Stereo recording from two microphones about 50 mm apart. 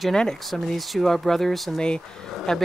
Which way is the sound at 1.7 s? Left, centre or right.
Centre.